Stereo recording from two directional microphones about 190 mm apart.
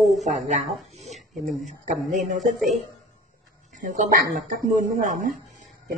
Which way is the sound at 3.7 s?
45° right (ahead or behind).